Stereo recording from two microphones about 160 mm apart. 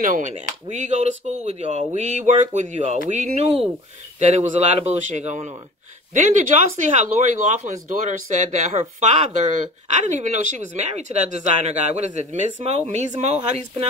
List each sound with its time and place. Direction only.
0.0 s speech: 55° right (ahead or behind)
6.9 s speech: 45° right (ahead or behind)